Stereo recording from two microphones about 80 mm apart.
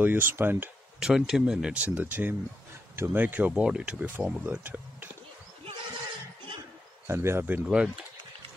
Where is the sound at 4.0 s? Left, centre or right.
Right.